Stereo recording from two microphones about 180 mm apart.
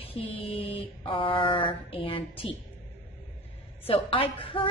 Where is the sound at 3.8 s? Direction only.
30° left (ahead or behind).